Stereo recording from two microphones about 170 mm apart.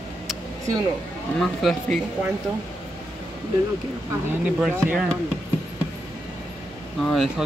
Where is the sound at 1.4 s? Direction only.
Centre (ahead or behind).